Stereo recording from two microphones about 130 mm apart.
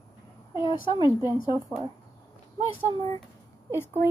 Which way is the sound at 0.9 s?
25° right (ahead or behind).